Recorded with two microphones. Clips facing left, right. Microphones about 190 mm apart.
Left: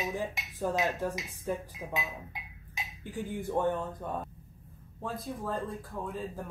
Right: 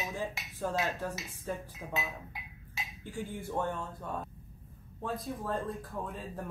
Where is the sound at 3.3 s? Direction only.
15° left (ahead or behind).